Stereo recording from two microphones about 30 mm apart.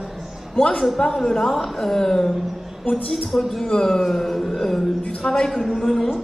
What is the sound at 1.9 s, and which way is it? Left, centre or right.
Speech, centre.